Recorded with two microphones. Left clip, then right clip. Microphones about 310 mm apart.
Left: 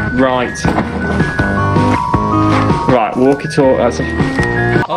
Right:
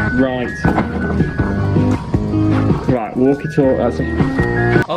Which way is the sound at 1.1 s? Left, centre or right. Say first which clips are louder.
Left 6 dB; left.